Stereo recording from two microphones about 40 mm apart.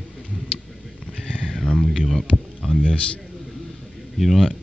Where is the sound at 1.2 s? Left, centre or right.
Left.